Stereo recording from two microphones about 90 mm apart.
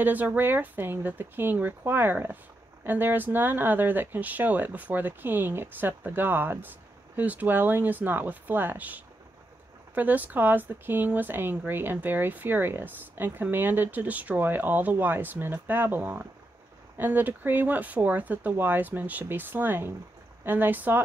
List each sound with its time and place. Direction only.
0.0 s speech: 20° right (ahead or behind)